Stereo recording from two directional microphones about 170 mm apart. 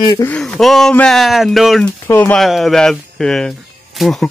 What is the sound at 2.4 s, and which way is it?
Speech, centre (ahead or behind).